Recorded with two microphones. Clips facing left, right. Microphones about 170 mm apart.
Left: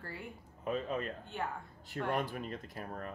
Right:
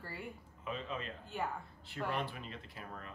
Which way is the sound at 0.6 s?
45° left (ahead or behind).